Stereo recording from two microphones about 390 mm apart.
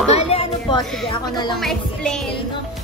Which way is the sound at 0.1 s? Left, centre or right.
Centre.